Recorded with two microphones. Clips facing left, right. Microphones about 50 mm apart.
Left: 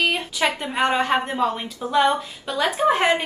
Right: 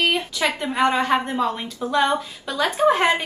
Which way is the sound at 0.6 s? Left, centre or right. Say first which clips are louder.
Right 4 dB; centre.